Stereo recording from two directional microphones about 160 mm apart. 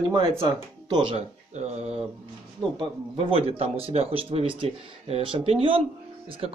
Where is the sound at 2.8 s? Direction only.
35° right (ahead or behind).